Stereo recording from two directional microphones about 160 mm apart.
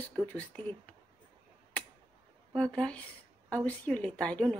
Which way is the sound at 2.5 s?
5° left (ahead or behind).